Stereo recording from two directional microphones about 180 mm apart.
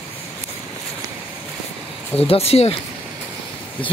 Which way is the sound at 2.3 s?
35° left (ahead or behind).